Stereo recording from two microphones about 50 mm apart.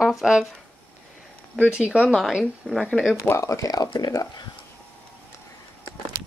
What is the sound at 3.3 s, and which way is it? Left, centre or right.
Speech, left.